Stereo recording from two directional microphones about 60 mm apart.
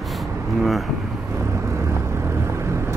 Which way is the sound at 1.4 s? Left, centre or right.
Right.